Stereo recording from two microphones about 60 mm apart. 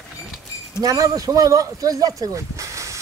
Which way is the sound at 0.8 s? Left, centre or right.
Right.